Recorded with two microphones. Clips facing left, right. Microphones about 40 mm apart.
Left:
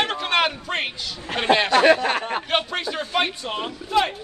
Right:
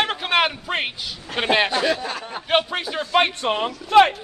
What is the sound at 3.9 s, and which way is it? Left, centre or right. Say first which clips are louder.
Speech: right 7 dB; right.